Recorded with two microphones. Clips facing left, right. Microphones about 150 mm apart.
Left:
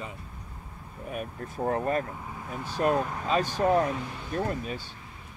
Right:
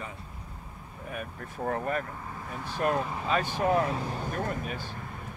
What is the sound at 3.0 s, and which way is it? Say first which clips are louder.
Speech: left 2 dB; centre (ahead or behind).